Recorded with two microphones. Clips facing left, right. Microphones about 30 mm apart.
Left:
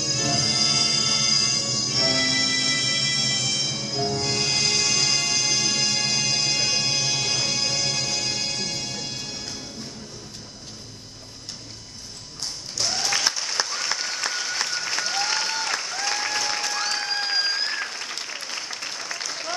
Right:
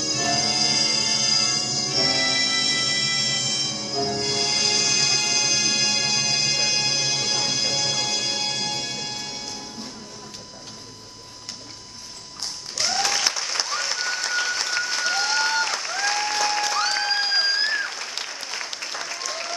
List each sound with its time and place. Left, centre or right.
0.0 s music: centre
12.7 s applause: centre
17.0 s applause: right
18.7 s applause: centre